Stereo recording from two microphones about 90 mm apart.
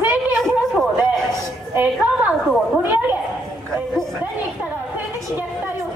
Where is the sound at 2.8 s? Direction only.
20° right (ahead or behind).